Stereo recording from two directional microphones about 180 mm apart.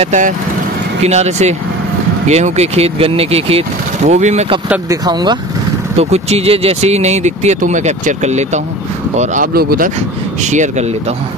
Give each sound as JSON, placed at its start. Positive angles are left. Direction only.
{"t": 0.0, "sound": "speech", "side_deg": -40}
{"t": 4.8, "sound": "speech", "side_deg": -20}
{"t": 5.9, "sound": "speech", "side_deg": -35}
{"t": 10.5, "sound": "speech", "side_deg": -40}